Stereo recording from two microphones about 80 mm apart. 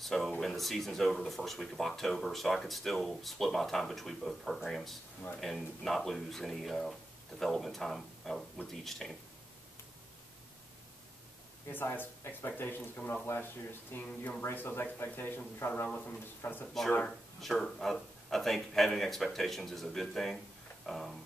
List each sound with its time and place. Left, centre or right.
0.0 s a sound: centre
0.4 s speech: centre
11.7 s speech: left
17.0 s speech: centre